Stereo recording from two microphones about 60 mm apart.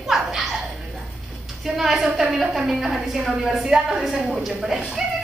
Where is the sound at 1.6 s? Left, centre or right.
Centre.